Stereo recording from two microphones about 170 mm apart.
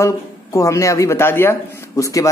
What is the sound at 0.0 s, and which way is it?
Speech, 20° left (ahead or behind).